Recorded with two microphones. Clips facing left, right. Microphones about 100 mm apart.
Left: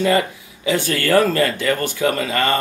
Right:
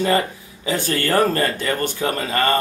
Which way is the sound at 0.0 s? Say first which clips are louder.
Left 2 dB; 35° right (ahead or behind).